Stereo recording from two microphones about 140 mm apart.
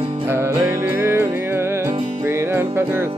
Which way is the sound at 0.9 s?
20° right (ahead or behind).